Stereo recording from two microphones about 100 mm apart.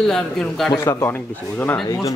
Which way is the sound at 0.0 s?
5° left (ahead or behind).